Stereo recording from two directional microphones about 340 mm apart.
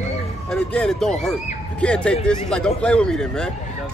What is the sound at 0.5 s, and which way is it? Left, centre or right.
A man's voice, centre.